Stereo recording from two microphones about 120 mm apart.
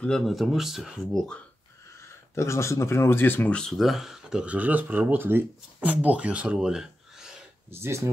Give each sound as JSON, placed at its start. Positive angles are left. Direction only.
{"t": 0.0, "sound": "speech", "side_deg": 5}
{"t": 2.3, "sound": "speech", "side_deg": 25}
{"t": 7.7, "sound": "speech", "side_deg": -20}